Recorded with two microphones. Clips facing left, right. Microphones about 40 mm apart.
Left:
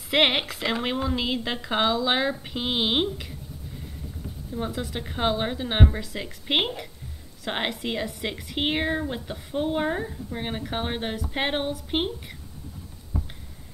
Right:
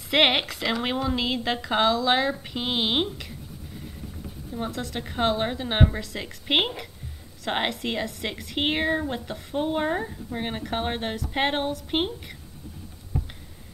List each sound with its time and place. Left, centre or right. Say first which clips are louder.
0.1 s speech: right 1 dB; centre
4.6 s a woman's voice: even; centre
13.1 s a sound: right 1 dB; right